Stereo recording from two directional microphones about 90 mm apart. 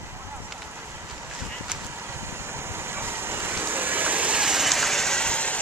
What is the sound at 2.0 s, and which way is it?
Vehicle, 30° right (ahead or behind).